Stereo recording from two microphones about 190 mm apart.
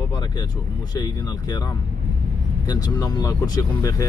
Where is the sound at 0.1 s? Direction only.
20° left (ahead or behind).